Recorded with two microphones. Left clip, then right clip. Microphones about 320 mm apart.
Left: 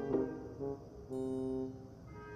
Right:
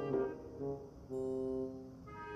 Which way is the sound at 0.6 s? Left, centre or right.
Centre.